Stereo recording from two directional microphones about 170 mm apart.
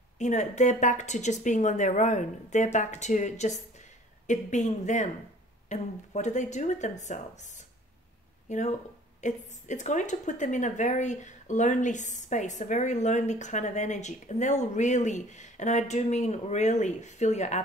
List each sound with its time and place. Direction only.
0.2 s speech: 45° left (ahead or behind)